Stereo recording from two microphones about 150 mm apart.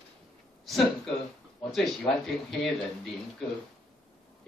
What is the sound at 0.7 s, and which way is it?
Speech, centre (ahead or behind).